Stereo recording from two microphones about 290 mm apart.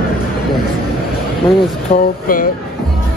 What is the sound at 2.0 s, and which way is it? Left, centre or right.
Speech, left.